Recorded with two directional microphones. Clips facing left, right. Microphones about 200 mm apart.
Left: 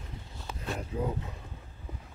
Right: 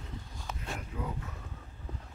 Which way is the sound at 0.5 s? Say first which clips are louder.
Left 7 dB; 30° left (ahead or behind).